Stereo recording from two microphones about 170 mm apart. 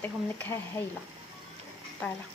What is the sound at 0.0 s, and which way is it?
Speech, 10° left (ahead or behind).